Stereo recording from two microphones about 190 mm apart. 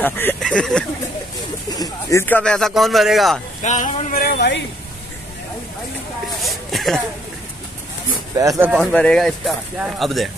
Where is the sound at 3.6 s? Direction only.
40° left (ahead or behind); by 4.6 s 60° left (ahead or behind).